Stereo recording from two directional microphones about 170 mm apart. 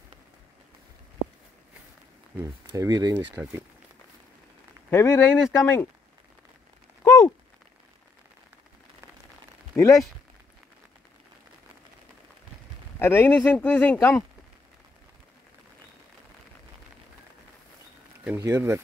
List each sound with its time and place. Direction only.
2.3 s speech: 15° right (ahead or behind)
3.4 s speech: 10° right (ahead or behind)
4.9 s speech: 15° left (ahead or behind)
7.0 s a sound: 15° left (ahead or behind)
9.8 s speech: 20° left (ahead or behind)
13.0 s speech: 15° left (ahead or behind)
18.2 s speech: 15° right (ahead or behind)